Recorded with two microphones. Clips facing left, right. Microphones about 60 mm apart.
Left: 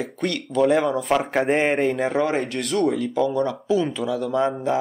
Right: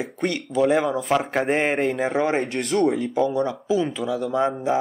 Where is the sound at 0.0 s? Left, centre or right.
Centre.